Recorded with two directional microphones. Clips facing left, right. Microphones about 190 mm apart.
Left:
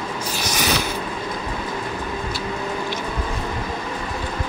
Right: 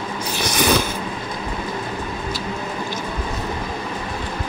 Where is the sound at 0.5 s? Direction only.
50° right (ahead or behind).